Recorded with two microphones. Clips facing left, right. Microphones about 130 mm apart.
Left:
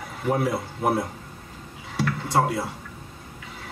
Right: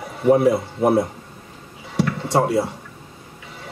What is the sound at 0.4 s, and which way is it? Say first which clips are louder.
Speech: right 8 dB; 25° right (ahead or behind).